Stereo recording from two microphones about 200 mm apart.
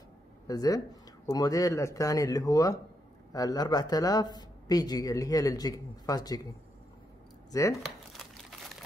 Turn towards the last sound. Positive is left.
turn(degrees=15)  # may be behind; listen again after turning